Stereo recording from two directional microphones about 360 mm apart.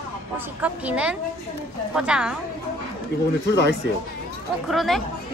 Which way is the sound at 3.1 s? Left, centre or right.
Left.